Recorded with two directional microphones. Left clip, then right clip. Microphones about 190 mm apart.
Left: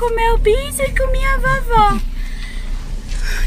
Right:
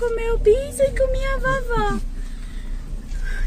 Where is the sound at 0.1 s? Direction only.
40° left (ahead or behind).